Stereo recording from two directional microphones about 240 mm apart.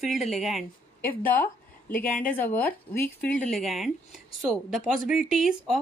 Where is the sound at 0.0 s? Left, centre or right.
Centre.